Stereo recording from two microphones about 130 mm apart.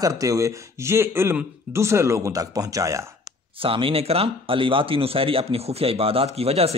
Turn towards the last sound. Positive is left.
turn(degrees=-50)  # may be behind; listen again after turning